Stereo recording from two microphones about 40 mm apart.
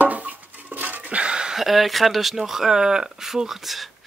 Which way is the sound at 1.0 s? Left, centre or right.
Right.